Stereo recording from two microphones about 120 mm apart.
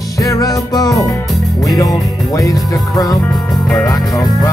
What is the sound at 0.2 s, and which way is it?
Music, 30° left (ahead or behind).